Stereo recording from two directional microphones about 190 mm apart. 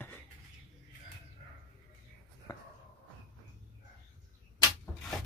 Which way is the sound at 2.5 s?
20° left (ahead or behind).